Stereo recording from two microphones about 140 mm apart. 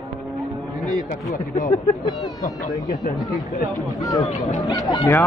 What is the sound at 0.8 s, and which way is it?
Speech, 70° left (ahead or behind).